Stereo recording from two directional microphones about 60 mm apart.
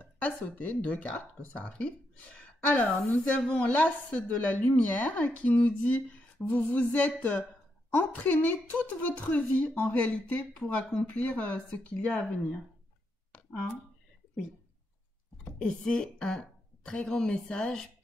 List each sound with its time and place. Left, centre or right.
0.0 s speech: left
2.8 s a woman's voice: centre
3.3 s speech: left
11.1 s speech: left
15.6 s a woman's voice: centre